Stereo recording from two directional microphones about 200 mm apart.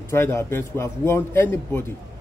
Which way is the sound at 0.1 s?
15° left (ahead or behind).